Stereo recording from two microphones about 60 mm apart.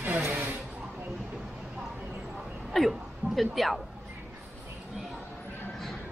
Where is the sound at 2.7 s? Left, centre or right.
Centre.